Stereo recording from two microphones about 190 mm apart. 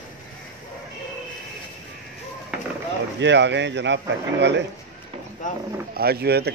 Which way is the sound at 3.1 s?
65° right (ahead or behind).